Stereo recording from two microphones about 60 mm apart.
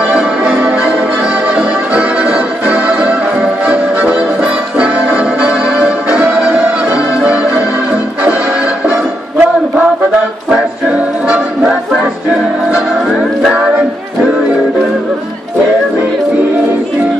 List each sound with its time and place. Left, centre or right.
0.0 s change ringing: centre
1.5 s music: centre